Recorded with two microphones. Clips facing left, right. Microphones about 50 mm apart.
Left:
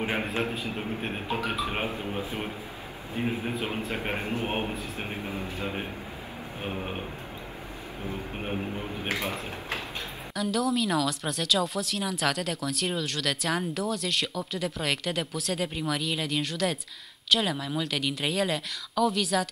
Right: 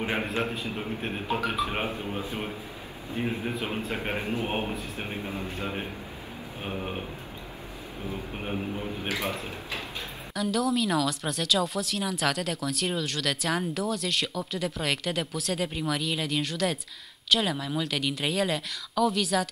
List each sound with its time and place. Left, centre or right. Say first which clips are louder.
0.0 s a woman's voice: even; centre
4.2 s a man's voice: right 1 dB; left
4.5 s a woman's voice: even; centre
6.6 s a woman's voice: even; centre
8.4 s a woman's voice: right 1 dB; centre
10.3 s a woman's voice: right 1 dB; centre